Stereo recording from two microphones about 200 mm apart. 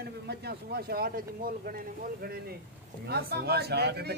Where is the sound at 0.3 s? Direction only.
55° right (ahead or behind).